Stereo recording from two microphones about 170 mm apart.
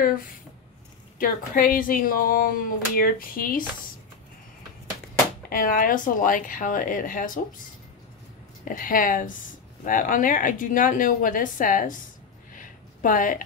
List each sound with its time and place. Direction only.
1.2 s speech: 55° left (ahead or behind)
5.5 s speech: 55° left (ahead or behind)
8.6 s speech: 55° left (ahead or behind)
12.5 s a sound: 50° left (ahead or behind)